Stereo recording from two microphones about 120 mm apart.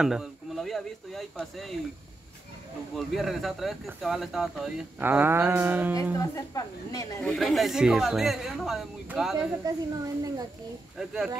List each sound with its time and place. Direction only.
0.0 s speech: 5° right (ahead or behind)
3.0 s speech: centre (ahead or behind)
5.0 s a sound: 15° right (ahead or behind)
6.1 s a woman's voice: 30° left (ahead or behind)
7.2 s speech: 5° left (ahead or behind)
10.0 s a child's voice: 30° right (ahead or behind)
11.0 s speech: 5° right (ahead or behind)